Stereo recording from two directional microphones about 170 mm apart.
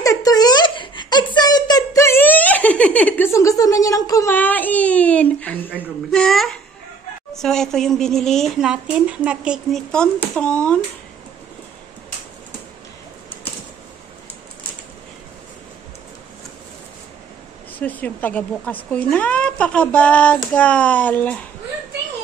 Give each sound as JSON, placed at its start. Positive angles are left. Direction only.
{"t": 0.0, "sound": "giggle", "side_deg": 20}
{"t": 5.8, "sound": "a sound", "side_deg": 5}
{"t": 7.3, "sound": "a woman's voice", "side_deg": 5}
{"t": 17.7, "sound": "speech", "side_deg": 10}